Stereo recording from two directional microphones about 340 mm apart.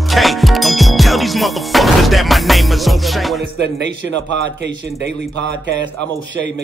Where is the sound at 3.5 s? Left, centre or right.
Right.